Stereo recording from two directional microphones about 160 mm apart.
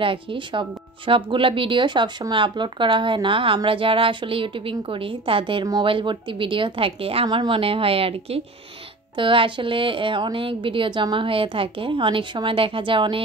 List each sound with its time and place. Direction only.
0.0 s speech: 35° right (ahead or behind)